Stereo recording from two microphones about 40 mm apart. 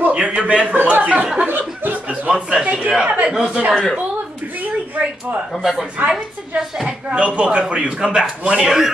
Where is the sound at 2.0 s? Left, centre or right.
Right.